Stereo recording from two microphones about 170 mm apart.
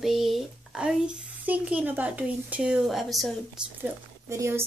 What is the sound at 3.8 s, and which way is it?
Speech, 15° right (ahead or behind).